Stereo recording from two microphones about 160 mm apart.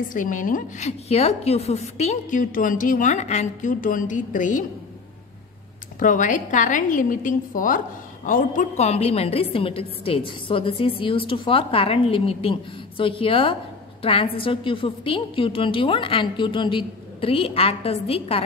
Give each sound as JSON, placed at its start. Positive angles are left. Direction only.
{"t": 0.1, "sound": "a woman's voice", "side_deg": 55}
{"t": 5.9, "sound": "a woman's voice", "side_deg": 55}